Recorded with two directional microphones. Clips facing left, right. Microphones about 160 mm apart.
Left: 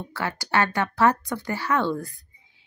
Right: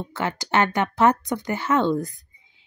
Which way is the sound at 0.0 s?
20° right (ahead or behind).